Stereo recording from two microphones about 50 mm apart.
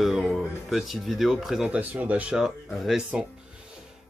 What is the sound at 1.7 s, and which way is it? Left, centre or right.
Speech, right.